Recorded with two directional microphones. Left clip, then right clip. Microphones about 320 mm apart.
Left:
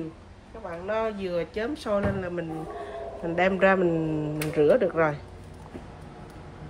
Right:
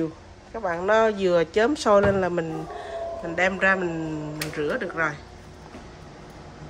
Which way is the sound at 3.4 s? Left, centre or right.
Centre.